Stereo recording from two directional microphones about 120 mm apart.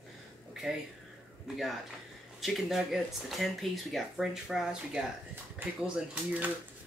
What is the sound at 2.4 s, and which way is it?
Speech, centre (ahead or behind).